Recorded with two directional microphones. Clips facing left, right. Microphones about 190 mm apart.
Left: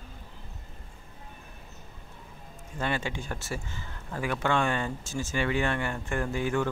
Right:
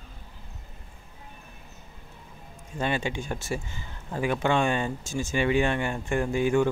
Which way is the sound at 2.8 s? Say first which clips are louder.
Right 3 dB; 20° right (ahead or behind).